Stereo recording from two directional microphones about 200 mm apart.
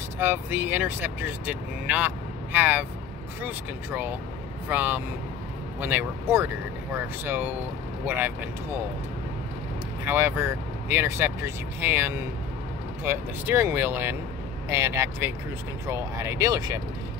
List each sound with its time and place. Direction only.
0.2 s speech: 10° right (ahead or behind)
10.0 s speech: 10° right (ahead or behind)